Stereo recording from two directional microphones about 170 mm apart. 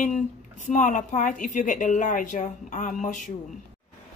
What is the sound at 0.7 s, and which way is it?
A woman's voice, 50° left (ahead or behind).